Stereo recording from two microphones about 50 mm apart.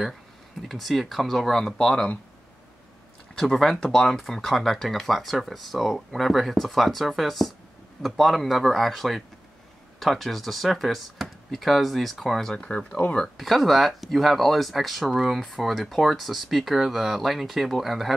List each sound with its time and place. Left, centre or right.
0.6 s speech: centre
3.3 s speech: centre
12.5 s speech: centre
13.4 s speech: centre